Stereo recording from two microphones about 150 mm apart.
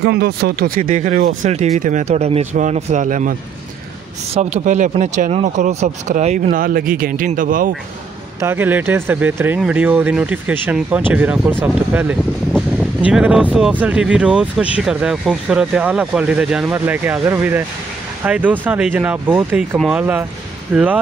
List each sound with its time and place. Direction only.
0.0 s speech: 90° right; by 3.3 s 60° right (ahead or behind)
4.3 s speech: 50° right (ahead or behind)
6.5 s speech: 70° right (ahead or behind)
8.4 s speech: 15° right (ahead or behind)